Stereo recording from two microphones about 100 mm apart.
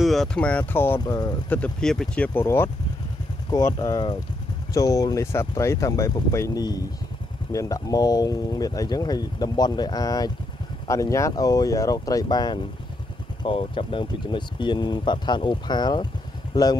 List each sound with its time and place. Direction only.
0.0 s speech: centre (ahead or behind); by 1.0 s 20° left (ahead or behind)
1.0 s speech: 40° left (ahead or behind)
1.5 s speech: 10° left (ahead or behind)
2.4 s speech: 25° left (ahead or behind)
3.4 s speech: 40° left (ahead or behind)
13.4 s speech: 65° left (ahead or behind)
14.2 s speech: 50° left (ahead or behind)